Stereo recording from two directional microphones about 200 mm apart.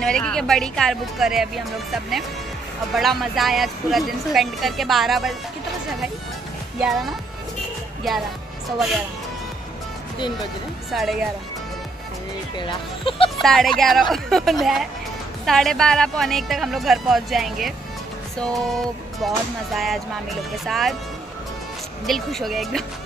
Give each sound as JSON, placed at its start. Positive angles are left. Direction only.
{"t": 0.0, "sound": "speech", "side_deg": 5}
{"t": 6.8, "sound": "speech", "side_deg": 0}
{"t": 10.9, "sound": "speech", "side_deg": 0}
{"t": 12.5, "sound": "speech", "side_deg": 25}
{"t": 13.4, "sound": "speech", "side_deg": 0}
{"t": 19.1, "sound": "speech", "side_deg": 0}
{"t": 22.0, "sound": "speech", "side_deg": 0}